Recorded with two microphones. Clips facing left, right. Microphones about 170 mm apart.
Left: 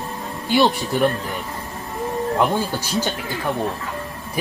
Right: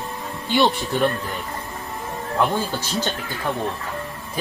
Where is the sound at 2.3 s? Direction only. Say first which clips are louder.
Right 1 dB; 15° left (ahead or behind).